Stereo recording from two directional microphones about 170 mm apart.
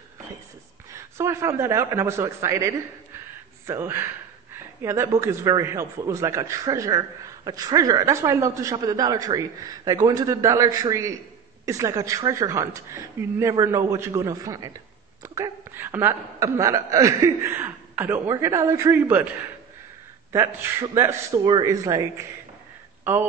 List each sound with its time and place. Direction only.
0.9 s a woman's voice: 15° right (ahead or behind)
20.3 s a man's voice: 15° right (ahead or behind)